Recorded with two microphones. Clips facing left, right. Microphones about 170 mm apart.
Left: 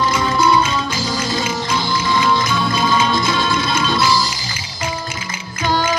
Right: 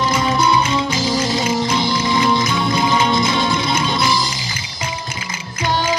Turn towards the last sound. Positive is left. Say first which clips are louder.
# left 1 dB
turn(degrees=-20)  # may be behind; listen again after turning